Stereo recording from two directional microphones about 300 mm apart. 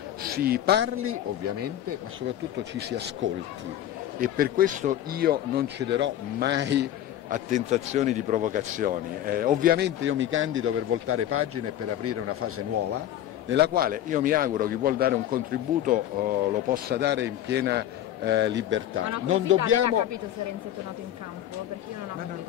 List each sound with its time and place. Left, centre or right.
0.2 s a man's voice: right
2.2 s speech: right
13.5 s speech: right
19.8 s speech: right